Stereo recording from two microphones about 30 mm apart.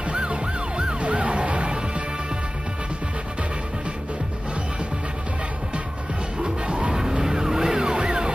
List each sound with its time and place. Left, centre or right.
0.1 s emergency vehicle: right
1.0 s music: right
6.4 s music: right
6.9 s vehicle: right